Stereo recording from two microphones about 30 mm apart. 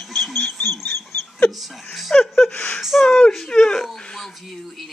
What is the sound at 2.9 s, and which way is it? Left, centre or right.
Speech, centre.